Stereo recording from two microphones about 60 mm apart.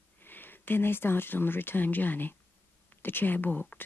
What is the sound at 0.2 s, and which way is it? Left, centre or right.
Speech, left.